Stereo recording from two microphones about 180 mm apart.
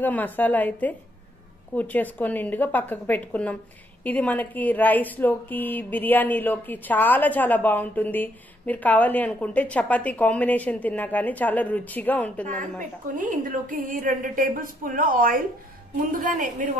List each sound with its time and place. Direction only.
0.0 s a woman's voice: 10° left (ahead or behind)
13.1 s a woman's voice: 45° right (ahead or behind)